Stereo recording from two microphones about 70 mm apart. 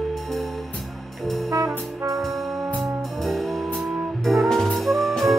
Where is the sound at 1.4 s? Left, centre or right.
Right.